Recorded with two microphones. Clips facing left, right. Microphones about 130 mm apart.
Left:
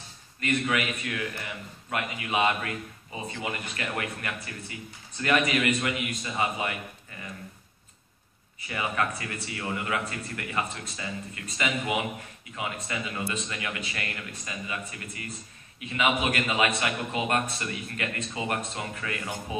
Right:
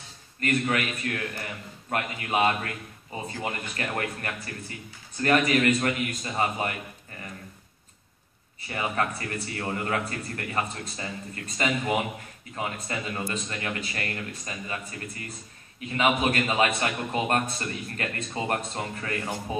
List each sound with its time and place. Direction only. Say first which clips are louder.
0.4 s a man's voice: right 1 dB; 45° right (ahead or behind)
8.6 s a man's voice: right 1 dB; 35° right (ahead or behind)